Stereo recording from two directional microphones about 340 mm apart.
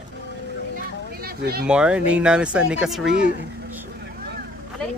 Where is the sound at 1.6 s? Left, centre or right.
Centre.